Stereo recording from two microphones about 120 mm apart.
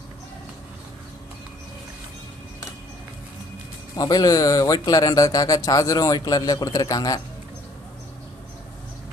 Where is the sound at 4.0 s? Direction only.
35° left (ahead or behind).